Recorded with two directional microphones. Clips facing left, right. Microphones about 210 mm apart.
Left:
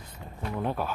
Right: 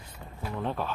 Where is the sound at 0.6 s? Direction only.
10° left (ahead or behind).